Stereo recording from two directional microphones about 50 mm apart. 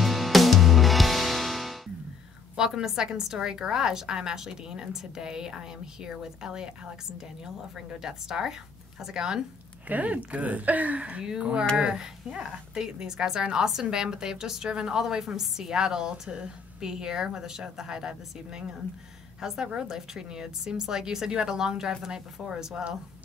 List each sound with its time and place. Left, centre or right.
0.0 s music: centre
2.5 s a woman's voice: centre
7.7 s a woman's voice: centre
9.8 s a woman's voice: right; by 22.8 s centre